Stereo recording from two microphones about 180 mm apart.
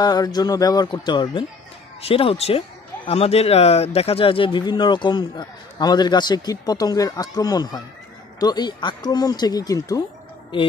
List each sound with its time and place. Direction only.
0.0 s speech: 20° left (ahead or behind)